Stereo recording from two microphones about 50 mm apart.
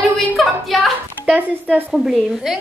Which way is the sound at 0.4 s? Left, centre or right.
Centre.